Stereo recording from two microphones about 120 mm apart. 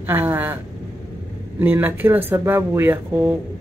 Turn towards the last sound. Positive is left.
turn(degrees=-20)  # may be behind; listen again after turning